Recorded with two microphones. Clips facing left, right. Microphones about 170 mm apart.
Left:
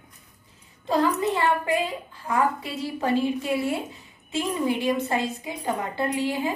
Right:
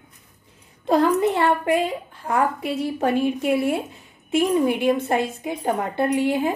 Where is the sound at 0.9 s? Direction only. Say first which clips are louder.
Right 5 dB; 60° right (ahead or behind).